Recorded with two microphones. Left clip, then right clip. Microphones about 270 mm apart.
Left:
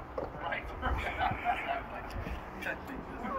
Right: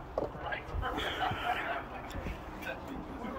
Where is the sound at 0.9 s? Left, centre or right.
Right.